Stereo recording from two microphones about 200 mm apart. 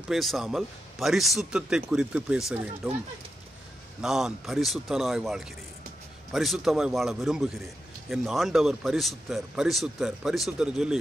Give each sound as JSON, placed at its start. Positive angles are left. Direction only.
{"t": 0.1, "sound": "speech", "side_deg": 0}
{"t": 4.0, "sound": "speech", "side_deg": 0}